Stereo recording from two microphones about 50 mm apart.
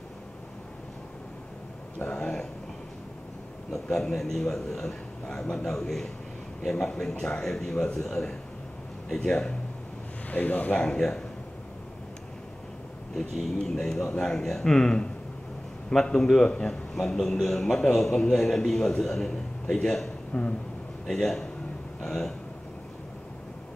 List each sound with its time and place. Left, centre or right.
2.0 s a sound: centre
3.7 s a man's voice: centre
10.3 s speech: left
10.8 s a man's voice: centre
13.3 s a man's voice: centre